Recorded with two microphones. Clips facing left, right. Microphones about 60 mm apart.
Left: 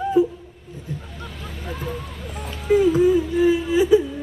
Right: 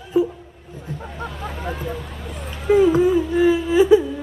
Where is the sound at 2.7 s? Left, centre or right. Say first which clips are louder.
Right 2 dB; right.